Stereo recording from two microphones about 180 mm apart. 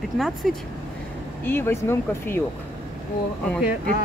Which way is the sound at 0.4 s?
Centre (ahead or behind).